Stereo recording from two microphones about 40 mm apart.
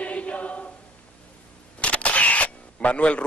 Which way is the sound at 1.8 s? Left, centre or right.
Left.